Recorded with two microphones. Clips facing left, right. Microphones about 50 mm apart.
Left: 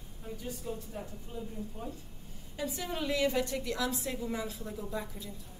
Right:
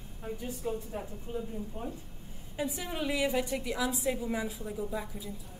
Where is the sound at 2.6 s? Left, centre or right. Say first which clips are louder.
Right 1 dB; centre.